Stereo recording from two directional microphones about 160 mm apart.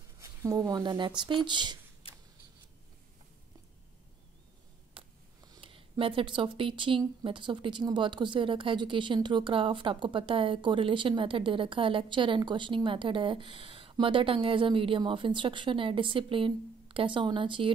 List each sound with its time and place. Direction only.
0.2 s speech: 20° right (ahead or behind)
4.9 s a sound: 30° right (ahead or behind)
7.2 s speech: 30° right (ahead or behind)